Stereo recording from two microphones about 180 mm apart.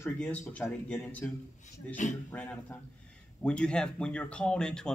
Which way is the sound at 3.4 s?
5° left (ahead or behind).